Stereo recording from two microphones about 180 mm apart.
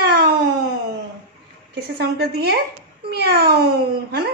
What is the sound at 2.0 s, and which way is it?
Speech, 60° right (ahead or behind).